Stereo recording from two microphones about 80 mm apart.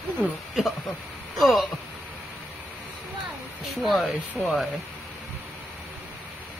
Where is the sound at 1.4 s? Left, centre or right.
Centre.